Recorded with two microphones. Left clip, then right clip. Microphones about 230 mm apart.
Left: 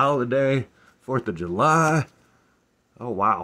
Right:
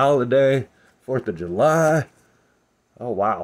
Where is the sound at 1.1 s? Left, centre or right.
Centre.